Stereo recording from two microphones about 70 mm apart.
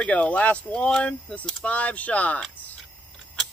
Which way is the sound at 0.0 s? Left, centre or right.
Centre.